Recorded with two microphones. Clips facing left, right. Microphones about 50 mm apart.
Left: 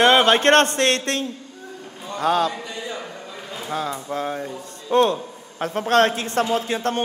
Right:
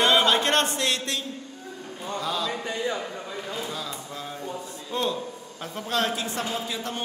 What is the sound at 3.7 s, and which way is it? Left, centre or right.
A man's voice, left.